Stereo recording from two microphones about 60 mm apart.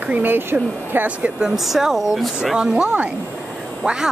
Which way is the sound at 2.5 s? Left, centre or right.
Centre.